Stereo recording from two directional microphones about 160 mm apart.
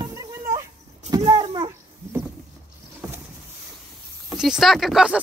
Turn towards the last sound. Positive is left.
turn(degrees=-5)  # may be behind; listen again after turning